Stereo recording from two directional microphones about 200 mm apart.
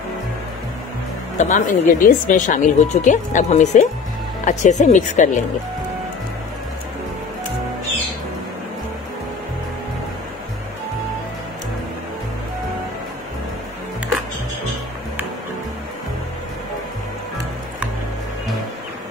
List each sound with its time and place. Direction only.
1.4 s speech: 40° left (ahead or behind)